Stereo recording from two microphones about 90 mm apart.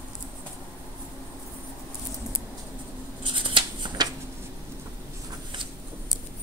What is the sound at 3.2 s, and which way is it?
Shuffling cards, 65° right (ahead or behind).